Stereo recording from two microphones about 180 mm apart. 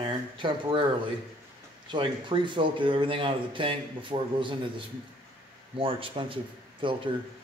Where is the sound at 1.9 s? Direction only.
30° right (ahead or behind).